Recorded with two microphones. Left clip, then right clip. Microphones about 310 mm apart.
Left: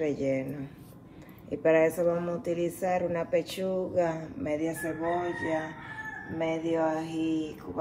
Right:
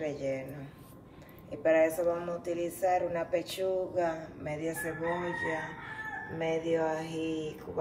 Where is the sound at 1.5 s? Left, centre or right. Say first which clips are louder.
Left 2 dB; centre.